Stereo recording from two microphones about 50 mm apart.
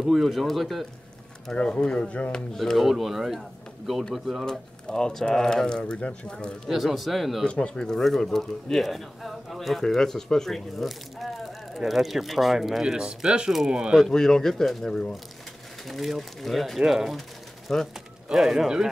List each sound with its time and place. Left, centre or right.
0.0 s speech: centre
1.5 s speech: centre
2.5 s speech: centre
4.5 s speech: centre
6.7 s speech: centre
7.4 s speech: left; by 13.9 s centre
14.1 s speech: centre
15.9 s speech: centre
17.7 s speech: centre
18.3 s speech: centre